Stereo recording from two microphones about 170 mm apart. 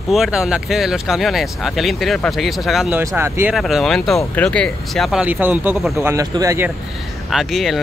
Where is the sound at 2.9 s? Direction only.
15° right (ahead or behind).